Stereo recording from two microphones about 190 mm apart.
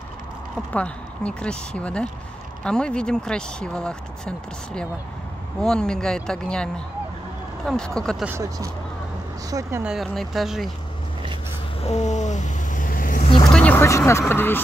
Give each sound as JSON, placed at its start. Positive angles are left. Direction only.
{"t": 0.7, "sound": "speech", "side_deg": 5}
{"t": 8.3, "sound": "speech", "side_deg": -15}
{"t": 9.9, "sound": "speech", "side_deg": 0}
{"t": 11.8, "sound": "vehicle", "side_deg": 35}
{"t": 13.5, "sound": "speech", "side_deg": 5}